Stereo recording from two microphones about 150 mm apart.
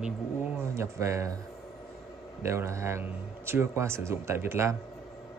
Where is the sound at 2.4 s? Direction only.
20° right (ahead or behind).